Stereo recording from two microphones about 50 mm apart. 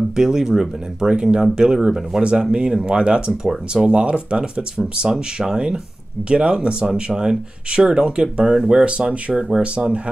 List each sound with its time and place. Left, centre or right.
0.1 s speech: centre